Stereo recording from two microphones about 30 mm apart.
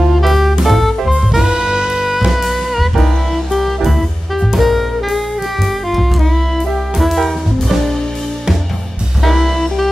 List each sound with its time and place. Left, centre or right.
0.0 s music: centre
1.4 s saxophone: right
2.1 s music: centre
9.2 s music: centre